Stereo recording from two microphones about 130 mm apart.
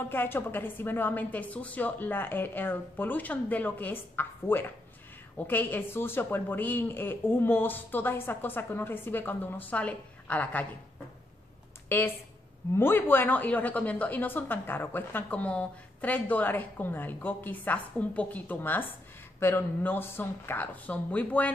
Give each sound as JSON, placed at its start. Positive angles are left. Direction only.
{"t": 0.0, "sound": "a woman's voice", "side_deg": 15}
{"t": 11.9, "sound": "a woman's voice", "side_deg": 20}